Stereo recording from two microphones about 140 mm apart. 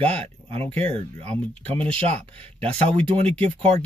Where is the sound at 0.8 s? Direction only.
45° right (ahead or behind).